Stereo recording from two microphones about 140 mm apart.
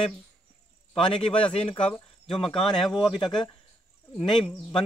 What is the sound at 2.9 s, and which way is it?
Speech, 35° left (ahead or behind).